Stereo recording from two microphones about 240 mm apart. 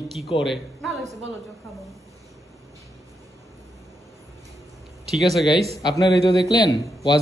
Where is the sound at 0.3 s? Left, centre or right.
Left.